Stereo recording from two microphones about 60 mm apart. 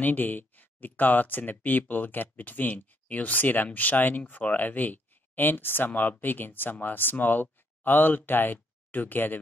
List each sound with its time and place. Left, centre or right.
0.0 s speech: left